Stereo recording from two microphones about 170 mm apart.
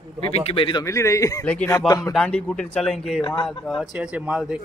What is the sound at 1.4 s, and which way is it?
Speech, 10° left (ahead or behind).